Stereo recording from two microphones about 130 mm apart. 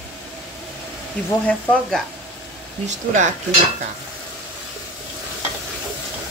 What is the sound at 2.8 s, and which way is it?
Speech, 70° right (ahead or behind).